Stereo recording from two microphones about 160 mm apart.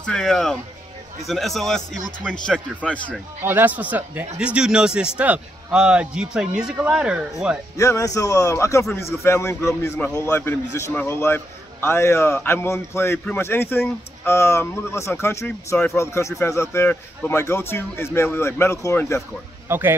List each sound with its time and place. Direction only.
0.0 s a man's voice: 5° left (ahead or behind)
3.4 s speech: 10° right (ahead or behind)
7.7 s a man's voice: 20° left (ahead or behind)
19.7 s speech: 15° right (ahead or behind)